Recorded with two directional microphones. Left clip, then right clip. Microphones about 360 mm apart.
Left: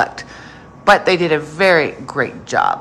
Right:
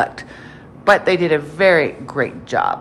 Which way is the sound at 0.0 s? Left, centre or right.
Centre.